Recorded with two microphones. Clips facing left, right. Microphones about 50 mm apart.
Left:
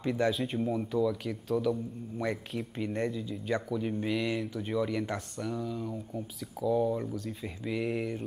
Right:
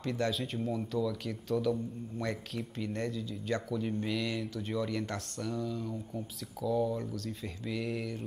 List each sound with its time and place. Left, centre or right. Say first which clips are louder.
0.0 s a man's voice: left 4 dB; centre